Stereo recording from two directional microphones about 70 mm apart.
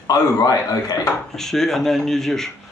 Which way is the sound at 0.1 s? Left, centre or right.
Left.